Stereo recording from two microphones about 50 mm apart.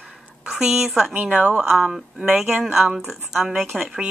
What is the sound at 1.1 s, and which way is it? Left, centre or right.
Speech, right.